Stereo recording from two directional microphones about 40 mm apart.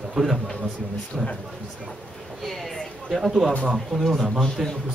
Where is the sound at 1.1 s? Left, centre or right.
Centre.